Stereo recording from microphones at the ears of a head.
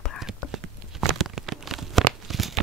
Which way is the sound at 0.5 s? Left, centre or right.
Right.